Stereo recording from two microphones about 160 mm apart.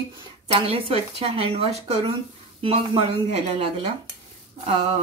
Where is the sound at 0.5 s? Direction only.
35° right (ahead or behind).